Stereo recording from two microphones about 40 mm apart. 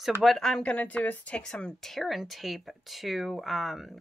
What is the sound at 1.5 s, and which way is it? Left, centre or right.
Speech, centre.